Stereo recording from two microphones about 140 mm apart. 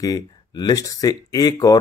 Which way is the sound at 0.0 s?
30° left (ahead or behind).